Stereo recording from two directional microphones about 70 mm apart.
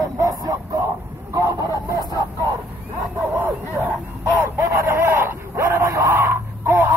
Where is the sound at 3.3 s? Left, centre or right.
Right.